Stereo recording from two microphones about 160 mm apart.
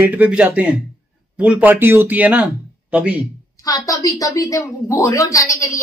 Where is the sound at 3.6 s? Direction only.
20° left (ahead or behind).